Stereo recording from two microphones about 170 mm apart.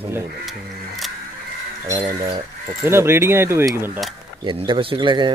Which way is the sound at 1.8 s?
20° right (ahead or behind).